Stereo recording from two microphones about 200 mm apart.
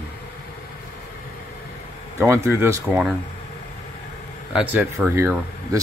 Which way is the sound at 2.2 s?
15° right (ahead or behind).